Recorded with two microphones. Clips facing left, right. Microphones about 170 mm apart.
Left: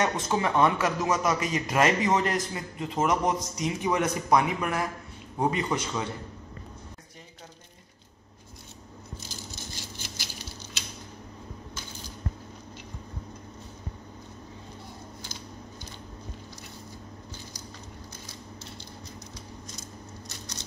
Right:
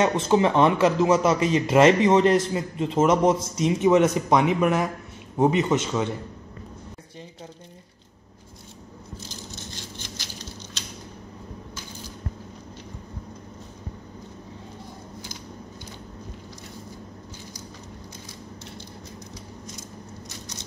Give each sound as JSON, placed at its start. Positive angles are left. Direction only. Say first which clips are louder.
{"t": 0.0, "sound": "a man's voice", "louder": "right 7 dB", "side_deg": -25}
{"t": 9.9, "sound": "patter", "louder": "right 2 dB", "side_deg": 10}